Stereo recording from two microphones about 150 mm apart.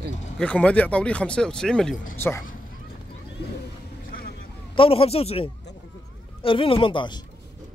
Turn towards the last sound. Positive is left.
turn(degrees=35)  # may be behind; listen again after turning